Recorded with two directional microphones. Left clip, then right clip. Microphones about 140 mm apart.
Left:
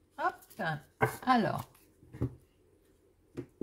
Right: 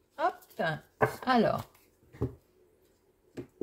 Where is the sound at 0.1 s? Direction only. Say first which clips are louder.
Right 3 dB; 25° right (ahead or behind).